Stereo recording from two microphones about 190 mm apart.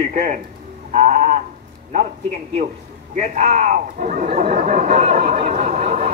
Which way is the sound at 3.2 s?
40° right (ahead or behind).